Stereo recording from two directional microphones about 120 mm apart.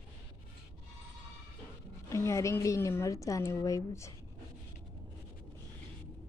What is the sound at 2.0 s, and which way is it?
A woman's voice, 25° left (ahead or behind).